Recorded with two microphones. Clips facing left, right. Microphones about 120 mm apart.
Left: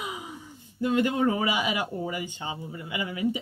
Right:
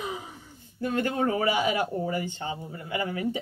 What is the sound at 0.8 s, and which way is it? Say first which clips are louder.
A woman's voice: left 3 dB; 20° left (ahead or behind).